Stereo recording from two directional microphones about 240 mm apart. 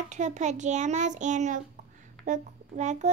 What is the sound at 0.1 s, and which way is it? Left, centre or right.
A child's voice, right.